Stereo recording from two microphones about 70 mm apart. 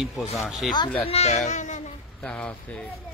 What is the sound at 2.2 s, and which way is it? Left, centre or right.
Speech, centre.